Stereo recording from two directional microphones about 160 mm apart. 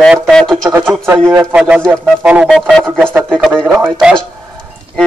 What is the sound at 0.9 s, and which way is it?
Speech, 15° right (ahead or behind).